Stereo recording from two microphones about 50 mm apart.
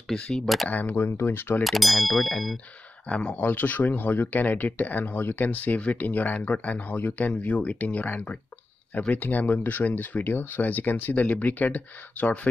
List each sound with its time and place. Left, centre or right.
0.3 s clang: centre
0.7 s speech: left
1.6 s clang: centre
3.1 s speech: left
3.4 s speech: left